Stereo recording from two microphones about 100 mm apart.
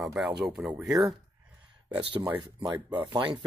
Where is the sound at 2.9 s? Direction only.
50° right (ahead or behind).